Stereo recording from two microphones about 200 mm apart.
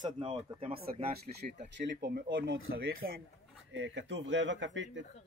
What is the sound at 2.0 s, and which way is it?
Speech, 50° right (ahead or behind).